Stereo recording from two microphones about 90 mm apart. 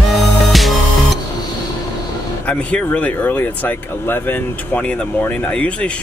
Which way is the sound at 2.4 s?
15° left (ahead or behind).